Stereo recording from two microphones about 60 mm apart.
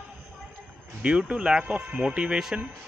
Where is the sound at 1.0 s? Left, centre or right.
Centre.